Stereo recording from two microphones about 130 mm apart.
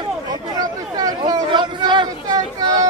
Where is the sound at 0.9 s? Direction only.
30° right (ahead or behind).